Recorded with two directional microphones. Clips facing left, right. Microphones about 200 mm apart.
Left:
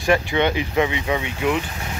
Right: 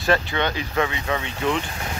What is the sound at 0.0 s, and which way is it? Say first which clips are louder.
Speech: left 3 dB; 15° left (ahead or behind).